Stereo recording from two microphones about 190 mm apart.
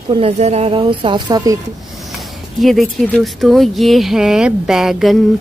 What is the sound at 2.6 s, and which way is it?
Speech, centre (ahead or behind).